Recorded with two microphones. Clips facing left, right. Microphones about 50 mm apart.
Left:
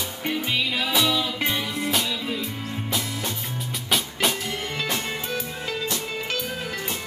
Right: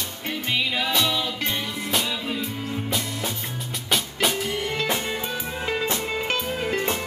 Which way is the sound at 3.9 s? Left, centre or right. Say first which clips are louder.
Even; centre.